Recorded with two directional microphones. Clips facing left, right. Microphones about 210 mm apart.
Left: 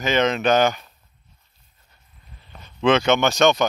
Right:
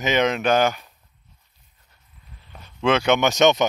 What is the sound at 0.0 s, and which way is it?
Speech, 15° right (ahead or behind).